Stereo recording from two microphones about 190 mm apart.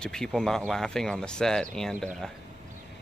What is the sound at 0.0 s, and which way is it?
Speech, 5° left (ahead or behind).